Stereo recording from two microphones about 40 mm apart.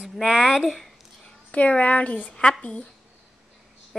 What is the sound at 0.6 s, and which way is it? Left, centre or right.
Speech, centre.